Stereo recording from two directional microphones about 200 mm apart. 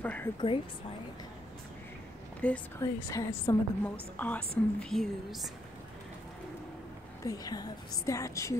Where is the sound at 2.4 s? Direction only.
5° left (ahead or behind).